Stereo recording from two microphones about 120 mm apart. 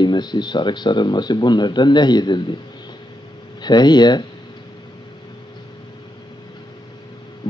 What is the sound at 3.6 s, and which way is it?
Speech, 35° left (ahead or behind).